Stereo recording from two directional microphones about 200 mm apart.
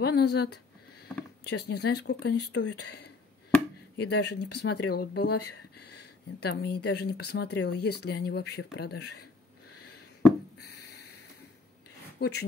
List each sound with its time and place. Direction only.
0.0 s speech: 55° left (ahead or behind)
10.6 s a sound: 55° left (ahead or behind)
12.2 s speech: 55° left (ahead or behind)